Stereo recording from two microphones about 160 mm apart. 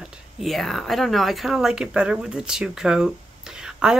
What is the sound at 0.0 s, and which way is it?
Speech, 5° right (ahead or behind).